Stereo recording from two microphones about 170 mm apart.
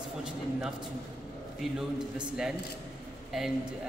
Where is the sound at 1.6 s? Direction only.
5° right (ahead or behind).